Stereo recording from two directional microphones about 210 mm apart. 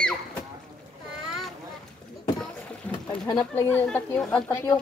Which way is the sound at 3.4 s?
5° left (ahead or behind).